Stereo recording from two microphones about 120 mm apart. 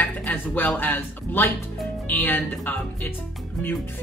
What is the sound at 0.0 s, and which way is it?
Speech, 15° left (ahead or behind).